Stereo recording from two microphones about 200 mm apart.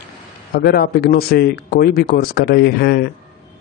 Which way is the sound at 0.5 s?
50° left (ahead or behind).